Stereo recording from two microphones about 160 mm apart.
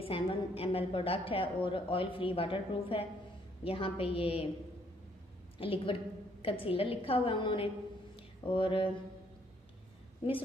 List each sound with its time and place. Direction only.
0.0 s a woman's voice: 35° left (ahead or behind)
5.6 s a woman's voice: 35° left (ahead or behind)